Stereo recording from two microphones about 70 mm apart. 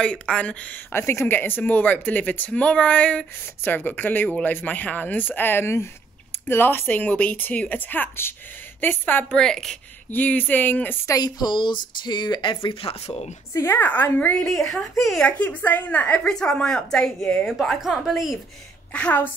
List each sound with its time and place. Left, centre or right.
0.0 s speech: centre
0.9 s speech: left
9.3 s a woman's voice: centre
10.1 s speech: left
11.1 s a woman's voice: left
12.0 s speech: left
13.5 s a woman's voice: left
13.7 s speech: left
14.7 s a woman's voice: centre
15.2 s speech: left
16.3 s a woman's voice: centre
17.5 s a woman's voice: centre
18.9 s a woman's voice: centre